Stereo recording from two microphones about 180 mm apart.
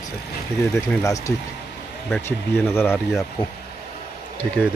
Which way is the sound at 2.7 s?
10° left (ahead or behind).